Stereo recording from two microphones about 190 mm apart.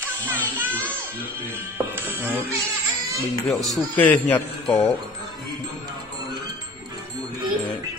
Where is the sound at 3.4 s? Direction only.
Centre (ahead or behind).